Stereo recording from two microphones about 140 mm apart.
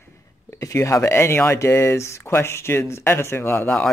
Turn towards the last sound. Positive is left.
turn(degrees=10)  # may be behind; listen again after turning